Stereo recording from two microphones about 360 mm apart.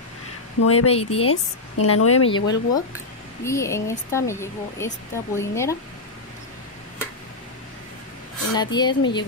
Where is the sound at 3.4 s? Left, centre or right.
Centre.